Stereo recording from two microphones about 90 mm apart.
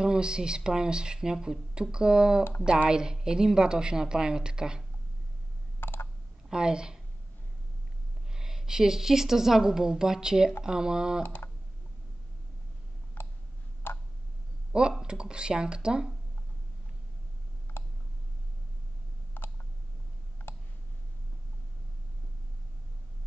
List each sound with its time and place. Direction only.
0.0 s speech: 10° right (ahead or behind)
5.8 s a sound: 25° left (ahead or behind)
6.5 s speech: 10° right (ahead or behind)
8.3 s a woman's voice: 5° right (ahead or behind)
11.2 s computer keyboard: 20° left (ahead or behind)
13.8 s tick: 25° left (ahead or behind)
14.7 s speech: 10° right (ahead or behind)
19.4 s a sound: 25° left (ahead or behind)
20.4 s clicking: 20° left (ahead or behind)